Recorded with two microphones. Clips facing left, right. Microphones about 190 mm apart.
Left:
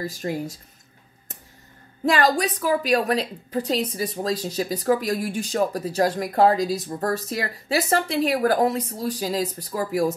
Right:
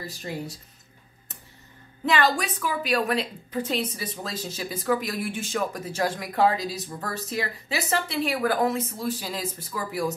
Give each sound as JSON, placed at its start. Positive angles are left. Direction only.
{"t": 0.0, "sound": "speech", "side_deg": 45}
{"t": 2.0, "sound": "a woman's voice", "side_deg": 40}